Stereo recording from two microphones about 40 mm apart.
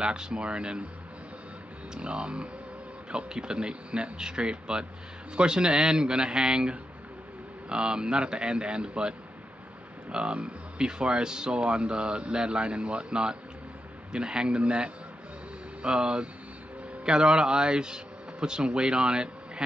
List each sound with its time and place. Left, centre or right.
0.0 s speech: right
2.0 s speech: right